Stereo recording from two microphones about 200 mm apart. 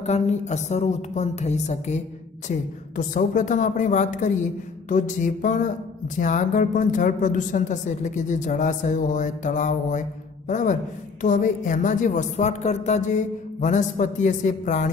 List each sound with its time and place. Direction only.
0.0 s a woman's voice: 35° left (ahead or behind)
3.0 s a woman's voice: 40° left (ahead or behind)